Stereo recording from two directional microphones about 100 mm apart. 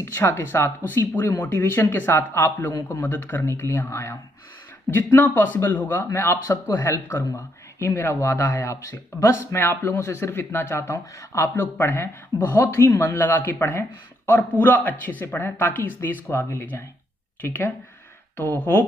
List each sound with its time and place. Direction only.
0.0 s speech: 25° left (ahead or behind)